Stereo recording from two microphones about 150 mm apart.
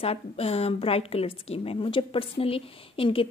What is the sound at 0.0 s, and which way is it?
A woman's voice, 40° left (ahead or behind).